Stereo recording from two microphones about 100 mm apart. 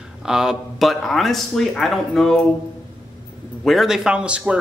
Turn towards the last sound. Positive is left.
turn(degrees=-10)  # may be behind; listen again after turning